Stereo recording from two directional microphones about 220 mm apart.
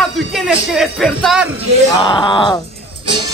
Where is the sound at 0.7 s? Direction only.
Centre (ahead or behind).